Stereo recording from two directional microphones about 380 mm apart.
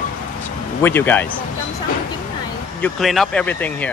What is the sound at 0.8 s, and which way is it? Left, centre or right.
Speech, centre.